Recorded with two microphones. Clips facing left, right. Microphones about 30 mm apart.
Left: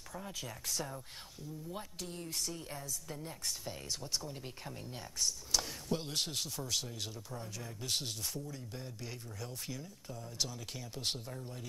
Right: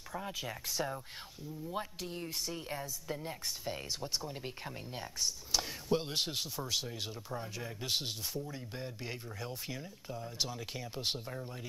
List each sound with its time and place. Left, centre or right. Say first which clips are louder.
0.1 s speech: right 5 dB; centre
8.5 s speech: right 3 dB; right